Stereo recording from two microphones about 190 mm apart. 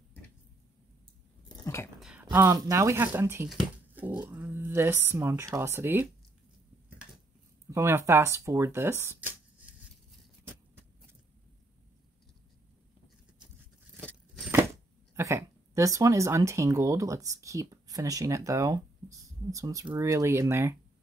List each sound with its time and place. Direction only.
1.6 s speech: 15° left (ahead or behind)
2.0 s a sound: 5° right (ahead or behind)
2.3 s speech: 15° right (ahead or behind)
7.7 s speech: 15° right (ahead or behind)
15.1 s speech: 15° right (ahead or behind)